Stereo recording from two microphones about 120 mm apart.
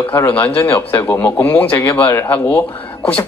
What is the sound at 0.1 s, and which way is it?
A man's voice, 15° left (ahead or behind).